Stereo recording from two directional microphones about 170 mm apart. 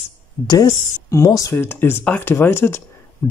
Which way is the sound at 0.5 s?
20° left (ahead or behind).